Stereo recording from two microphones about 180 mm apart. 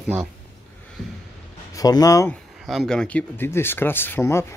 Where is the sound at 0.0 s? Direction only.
5° right (ahead or behind).